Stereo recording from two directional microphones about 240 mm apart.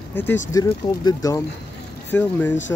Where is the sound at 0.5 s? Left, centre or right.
Centre.